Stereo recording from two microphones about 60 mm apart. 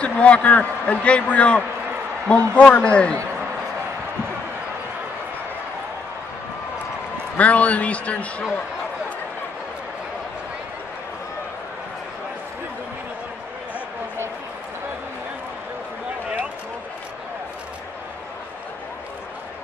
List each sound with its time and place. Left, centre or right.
0.0 s a man's voice: left
7.3 s a man's voice: left